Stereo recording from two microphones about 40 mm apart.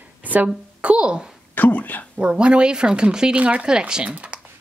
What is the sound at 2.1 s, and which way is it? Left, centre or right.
A woman's voice, right.